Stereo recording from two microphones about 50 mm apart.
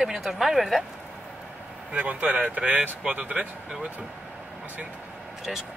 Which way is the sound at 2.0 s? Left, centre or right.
Right.